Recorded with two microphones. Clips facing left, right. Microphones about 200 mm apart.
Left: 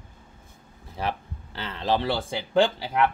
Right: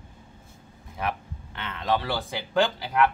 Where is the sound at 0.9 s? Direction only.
30° left (ahead or behind).